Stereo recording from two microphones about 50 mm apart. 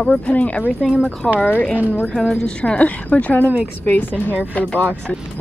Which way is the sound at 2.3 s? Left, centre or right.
Centre.